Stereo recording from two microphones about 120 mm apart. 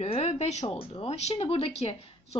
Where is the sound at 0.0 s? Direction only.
55° left (ahead or behind).